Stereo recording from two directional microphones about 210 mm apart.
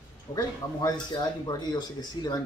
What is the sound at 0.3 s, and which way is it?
Speech, 20° left (ahead or behind).